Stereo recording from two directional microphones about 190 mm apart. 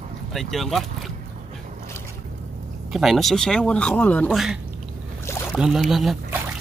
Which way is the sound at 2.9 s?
Centre (ahead or behind).